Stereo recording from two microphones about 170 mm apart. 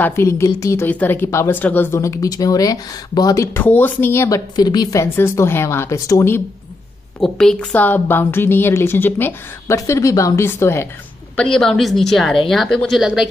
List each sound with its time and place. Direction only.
0.0 s a woman's voice: 15° left (ahead or behind)
7.2 s a woman's voice: 5° left (ahead or behind)
11.3 s a woman's voice: 5° left (ahead or behind)